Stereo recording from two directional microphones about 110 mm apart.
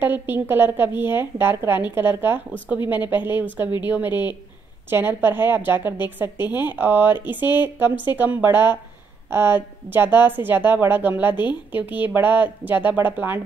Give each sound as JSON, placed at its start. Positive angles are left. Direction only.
{"t": 0.0, "sound": "a woman's voice", "side_deg": -20}